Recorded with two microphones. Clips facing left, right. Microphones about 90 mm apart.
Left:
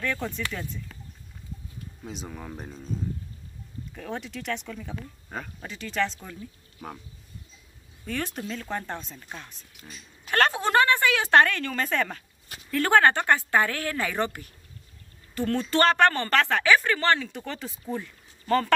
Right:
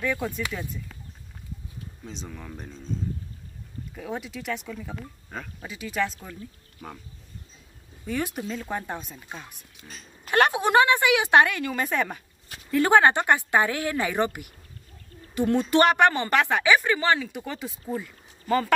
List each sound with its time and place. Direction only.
0.0 s speech: 10° right (ahead or behind)
2.0 s speech: 10° left (ahead or behind)
3.9 s speech: 5° right (ahead or behind)
6.8 s speech: 5° left (ahead or behind)
8.0 s speech: 10° right (ahead or behind)